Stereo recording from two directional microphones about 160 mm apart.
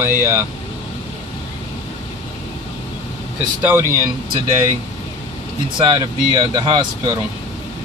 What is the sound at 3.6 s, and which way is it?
Speech, 15° right (ahead or behind).